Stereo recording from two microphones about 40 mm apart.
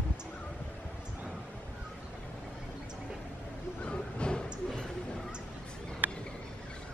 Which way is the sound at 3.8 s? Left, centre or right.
Left.